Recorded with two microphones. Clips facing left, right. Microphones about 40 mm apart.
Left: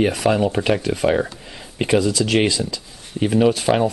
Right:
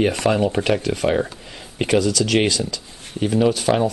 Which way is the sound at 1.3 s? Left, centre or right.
Centre.